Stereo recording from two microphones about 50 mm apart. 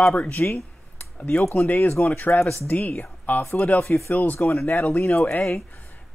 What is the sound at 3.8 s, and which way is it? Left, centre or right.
Speech, left.